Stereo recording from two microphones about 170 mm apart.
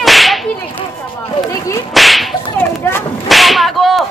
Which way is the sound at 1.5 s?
20° left (ahead or behind).